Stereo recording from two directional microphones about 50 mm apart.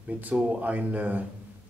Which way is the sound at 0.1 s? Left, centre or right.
Right.